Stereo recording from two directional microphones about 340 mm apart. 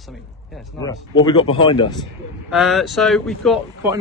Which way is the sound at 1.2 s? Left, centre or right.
Centre.